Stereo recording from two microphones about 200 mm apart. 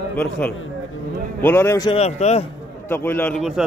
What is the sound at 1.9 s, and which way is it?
Speech, 30° left (ahead or behind).